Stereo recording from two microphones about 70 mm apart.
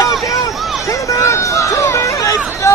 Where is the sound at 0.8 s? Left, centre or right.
Left.